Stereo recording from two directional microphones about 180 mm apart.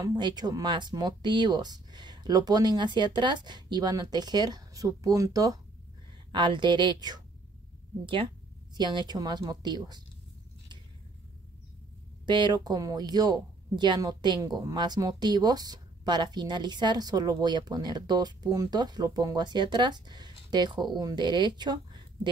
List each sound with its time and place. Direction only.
0.0 s speech: 25° right (ahead or behind)
12.3 s speech: 25° right (ahead or behind)